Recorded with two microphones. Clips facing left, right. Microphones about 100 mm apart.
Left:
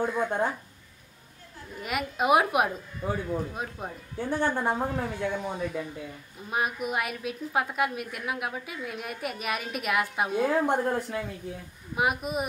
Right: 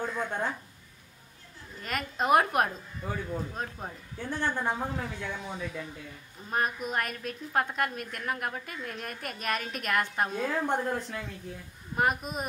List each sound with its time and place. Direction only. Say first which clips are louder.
0.0 s a woman's voice: left 5 dB; 15° left (ahead or behind)
1.8 s a woman's voice: left 3 dB; 10° left (ahead or behind)
3.0 s a woman's voice: left 4 dB; 20° left (ahead or behind)